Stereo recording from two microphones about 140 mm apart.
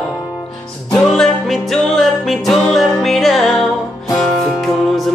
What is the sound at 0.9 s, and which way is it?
Music, 5° left (ahead or behind).